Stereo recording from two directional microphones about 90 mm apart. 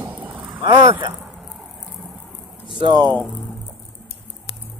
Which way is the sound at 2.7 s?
55° right (ahead or behind).